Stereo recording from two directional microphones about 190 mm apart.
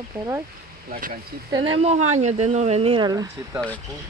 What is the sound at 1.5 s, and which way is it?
Speech, 25° right (ahead or behind).